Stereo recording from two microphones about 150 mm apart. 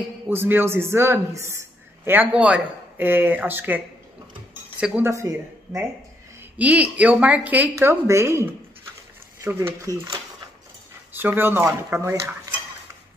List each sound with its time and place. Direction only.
0.3 s a man's voice: 15° right (ahead or behind)
11.1 s a man's voice: 15° right (ahead or behind)